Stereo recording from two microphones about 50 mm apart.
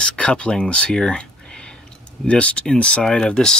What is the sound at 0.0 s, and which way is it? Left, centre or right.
Speech, centre.